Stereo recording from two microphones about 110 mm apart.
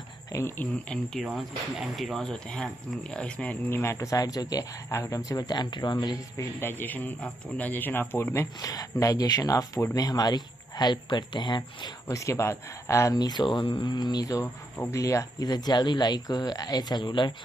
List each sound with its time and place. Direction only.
0.3 s speech: 25° left (ahead or behind)
0.8 s speech: centre (ahead or behind)
3.7 s speech: 25° left (ahead or behind); by 6.4 s 40° left (ahead or behind)
6.6 s a man's voice: 20° left (ahead or behind)
8.5 s speech: 35° left (ahead or behind)
12.1 s speech: 25° left (ahead or behind); by 17.3 s 45° left (ahead or behind)